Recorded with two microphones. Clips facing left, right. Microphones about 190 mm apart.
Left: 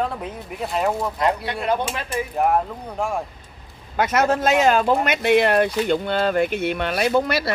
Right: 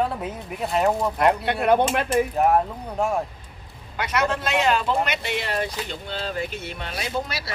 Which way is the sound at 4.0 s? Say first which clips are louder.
Left 5 dB; 45° left (ahead or behind).